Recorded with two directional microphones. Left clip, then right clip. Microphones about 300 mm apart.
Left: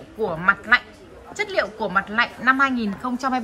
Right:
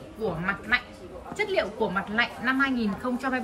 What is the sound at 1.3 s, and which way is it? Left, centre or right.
A woman's voice, centre.